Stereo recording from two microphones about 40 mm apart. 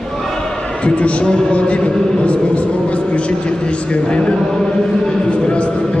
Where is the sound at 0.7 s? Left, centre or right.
Left.